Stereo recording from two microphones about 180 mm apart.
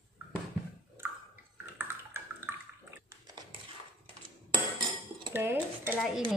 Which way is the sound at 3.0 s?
20° right (ahead or behind).